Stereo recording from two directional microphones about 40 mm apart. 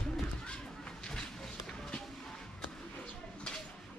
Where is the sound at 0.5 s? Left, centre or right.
Left.